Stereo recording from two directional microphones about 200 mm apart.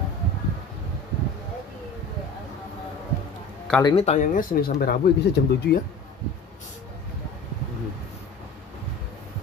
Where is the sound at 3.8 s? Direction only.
30° left (ahead or behind); by 5.7 s 55° left (ahead or behind).